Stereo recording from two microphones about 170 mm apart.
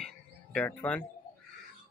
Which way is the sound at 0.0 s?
5° left (ahead or behind).